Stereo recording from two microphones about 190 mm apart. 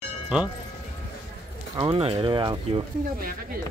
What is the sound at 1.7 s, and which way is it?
Speech, 25° right (ahead or behind).